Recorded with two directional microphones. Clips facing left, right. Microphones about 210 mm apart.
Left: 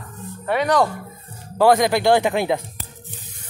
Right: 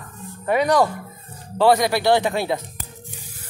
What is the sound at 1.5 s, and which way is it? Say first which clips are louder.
Speech: left 1 dB; 15° left (ahead or behind).